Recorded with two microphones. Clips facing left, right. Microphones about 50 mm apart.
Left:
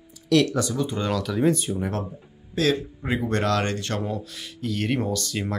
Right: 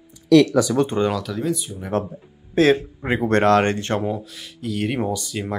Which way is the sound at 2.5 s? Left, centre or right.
Right.